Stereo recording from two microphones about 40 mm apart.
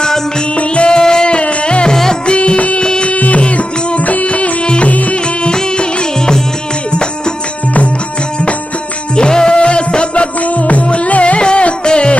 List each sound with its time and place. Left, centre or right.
0.6 s music: left
2.8 s music: left
3.1 s music: left; by 6.4 s centre
9.1 s music: left
10.4 s music: left